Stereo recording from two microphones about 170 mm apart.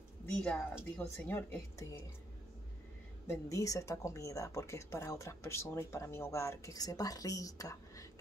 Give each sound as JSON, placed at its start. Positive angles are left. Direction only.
{"t": 0.4, "sound": "speech", "side_deg": 5}
{"t": 3.3, "sound": "speech", "side_deg": 20}